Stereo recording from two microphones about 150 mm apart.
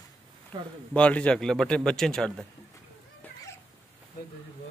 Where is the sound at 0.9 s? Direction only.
10° left (ahead or behind).